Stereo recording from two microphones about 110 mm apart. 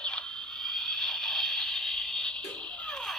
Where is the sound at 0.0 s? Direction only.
10° left (ahead or behind).